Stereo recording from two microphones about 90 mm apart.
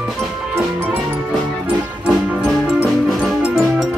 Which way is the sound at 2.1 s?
5° right (ahead or behind).